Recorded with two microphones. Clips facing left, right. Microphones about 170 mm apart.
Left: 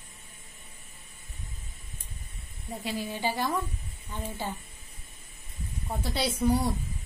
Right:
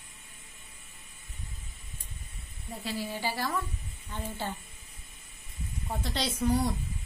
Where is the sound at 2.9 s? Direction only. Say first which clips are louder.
Left 2 dB; 20° left (ahead or behind).